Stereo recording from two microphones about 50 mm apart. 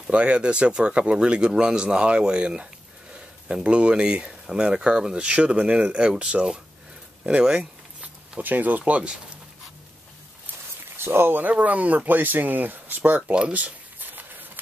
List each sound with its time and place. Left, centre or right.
0.0 s speech: right
8.0 s speech: right
11.0 s speech: right
11.4 s speech: right
13.3 s a sound: right